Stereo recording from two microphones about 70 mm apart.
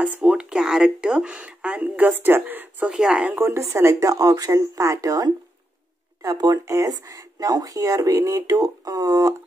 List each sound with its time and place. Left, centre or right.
0.0 s speech: centre
2.9 s speech: centre
3.3 s speech: right
6.6 s speech: right